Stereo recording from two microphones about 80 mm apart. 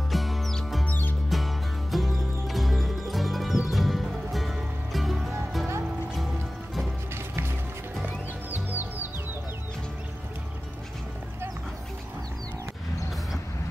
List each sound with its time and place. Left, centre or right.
0.1 s music: centre
0.8 s music: left
1.3 s music: centre
8.0 s music: right